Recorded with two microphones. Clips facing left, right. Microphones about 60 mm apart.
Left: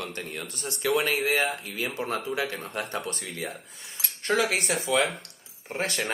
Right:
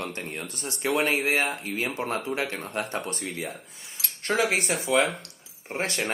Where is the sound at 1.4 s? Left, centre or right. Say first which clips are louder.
Even; right.